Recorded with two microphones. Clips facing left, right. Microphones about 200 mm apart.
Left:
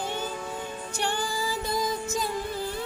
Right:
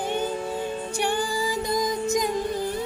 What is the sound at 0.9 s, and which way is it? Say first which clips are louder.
Music: right 3 dB; 15° right (ahead or behind).